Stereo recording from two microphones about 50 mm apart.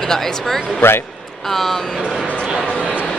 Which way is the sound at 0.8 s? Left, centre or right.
Left.